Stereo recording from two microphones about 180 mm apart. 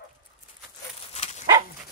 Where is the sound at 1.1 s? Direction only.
40° left (ahead or behind).